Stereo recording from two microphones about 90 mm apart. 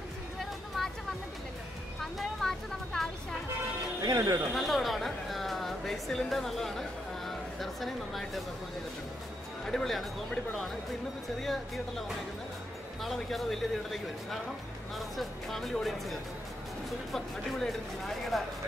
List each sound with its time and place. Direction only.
0.4 s a sound: centre (ahead or behind)
2.0 s vehicle: 5° left (ahead or behind)
4.0 s speech: 40° right (ahead or behind)
4.6 s speech: centre (ahead or behind)
9.7 s speech: 5° left (ahead or behind)
13.0 s speech: centre (ahead or behind)